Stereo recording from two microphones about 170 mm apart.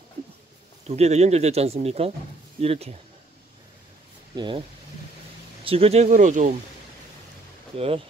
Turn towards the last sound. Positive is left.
turn(degrees=-35)  # may be behind; listen again after turning